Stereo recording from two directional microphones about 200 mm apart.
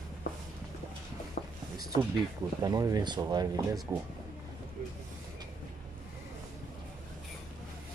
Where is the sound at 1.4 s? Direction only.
35° left (ahead or behind).